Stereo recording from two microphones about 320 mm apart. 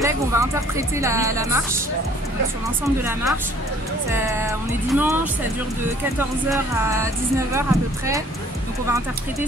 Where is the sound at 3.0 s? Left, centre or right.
Centre.